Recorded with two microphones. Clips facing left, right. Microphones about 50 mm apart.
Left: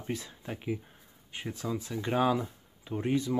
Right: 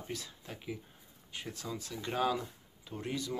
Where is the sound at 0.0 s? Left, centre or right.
Left.